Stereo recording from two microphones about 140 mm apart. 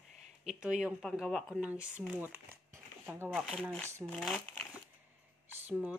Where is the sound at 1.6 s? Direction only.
10° right (ahead or behind).